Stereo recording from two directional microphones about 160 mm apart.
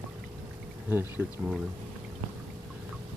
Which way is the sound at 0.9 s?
15° right (ahead or behind).